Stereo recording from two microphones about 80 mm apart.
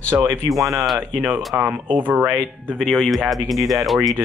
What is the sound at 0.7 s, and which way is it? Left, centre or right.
Speech, centre.